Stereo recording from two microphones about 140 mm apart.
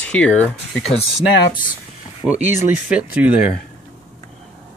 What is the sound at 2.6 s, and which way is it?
Speech, 10° right (ahead or behind).